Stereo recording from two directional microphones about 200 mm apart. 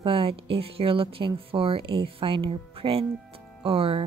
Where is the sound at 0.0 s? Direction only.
25° right (ahead or behind).